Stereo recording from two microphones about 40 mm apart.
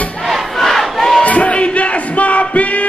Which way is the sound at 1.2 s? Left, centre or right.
Left.